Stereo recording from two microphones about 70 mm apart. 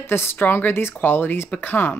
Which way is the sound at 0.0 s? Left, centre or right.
Left.